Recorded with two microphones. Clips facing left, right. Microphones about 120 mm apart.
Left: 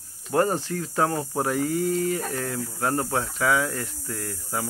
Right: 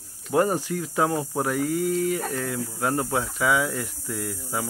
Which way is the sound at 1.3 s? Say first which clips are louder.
Even; 5° left (ahead or behind).